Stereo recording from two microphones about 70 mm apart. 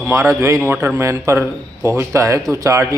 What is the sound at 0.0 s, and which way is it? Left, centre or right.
Speech, right.